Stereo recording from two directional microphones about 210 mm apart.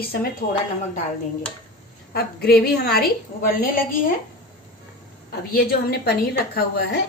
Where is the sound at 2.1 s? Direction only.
50° left (ahead or behind).